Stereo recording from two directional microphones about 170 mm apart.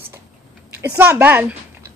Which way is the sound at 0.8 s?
15° right (ahead or behind).